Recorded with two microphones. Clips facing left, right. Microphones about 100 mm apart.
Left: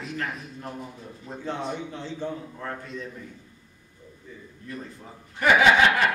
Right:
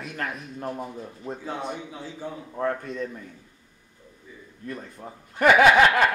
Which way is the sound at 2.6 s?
50° right (ahead or behind).